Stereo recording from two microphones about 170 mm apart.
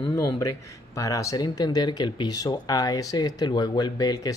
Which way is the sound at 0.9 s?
20° left (ahead or behind).